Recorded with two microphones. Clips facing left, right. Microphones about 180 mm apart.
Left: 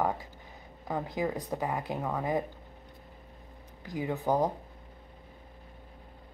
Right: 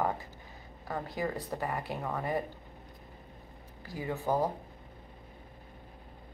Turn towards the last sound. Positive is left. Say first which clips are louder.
# left 2 dB
turn(degrees=15)  # may be behind; listen again after turning